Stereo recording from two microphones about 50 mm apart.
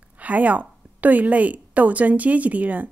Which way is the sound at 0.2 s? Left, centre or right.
Right.